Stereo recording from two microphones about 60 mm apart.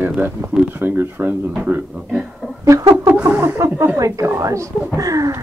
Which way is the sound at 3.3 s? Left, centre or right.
Right.